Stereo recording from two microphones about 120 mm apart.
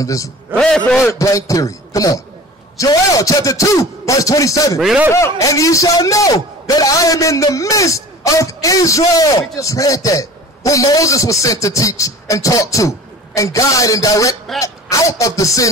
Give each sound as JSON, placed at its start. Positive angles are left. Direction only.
{"t": 0.0, "sound": "a man's voice", "side_deg": 25}
{"t": 0.6, "sound": "a man's voice", "side_deg": 5}
{"t": 1.0, "sound": "a man's voice", "side_deg": 25}
{"t": 4.7, "sound": "speech", "side_deg": 0}
{"t": 5.1, "sound": "a man's voice", "side_deg": 25}